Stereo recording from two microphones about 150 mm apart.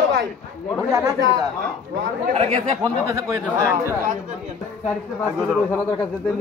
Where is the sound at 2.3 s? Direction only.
40° right (ahead or behind).